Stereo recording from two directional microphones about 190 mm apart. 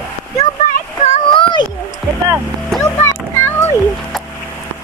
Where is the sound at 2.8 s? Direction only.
10° left (ahead or behind).